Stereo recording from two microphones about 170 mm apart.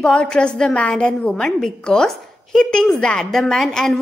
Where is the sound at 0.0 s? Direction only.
5° left (ahead or behind).